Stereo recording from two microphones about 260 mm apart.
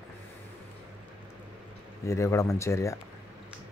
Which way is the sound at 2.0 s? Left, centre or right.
Centre.